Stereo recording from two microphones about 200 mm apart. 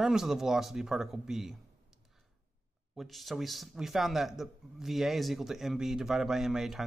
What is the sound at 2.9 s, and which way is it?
Speech, centre (ahead or behind).